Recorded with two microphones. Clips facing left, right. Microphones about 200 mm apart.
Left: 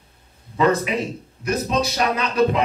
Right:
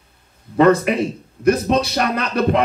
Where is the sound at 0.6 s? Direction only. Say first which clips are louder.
Right 5 dB; 60° right (ahead or behind).